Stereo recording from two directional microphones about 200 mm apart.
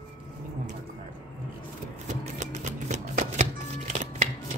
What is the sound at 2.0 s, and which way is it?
Music, 35° right (ahead or behind).